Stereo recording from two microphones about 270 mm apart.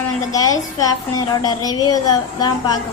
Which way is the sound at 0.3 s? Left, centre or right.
Centre.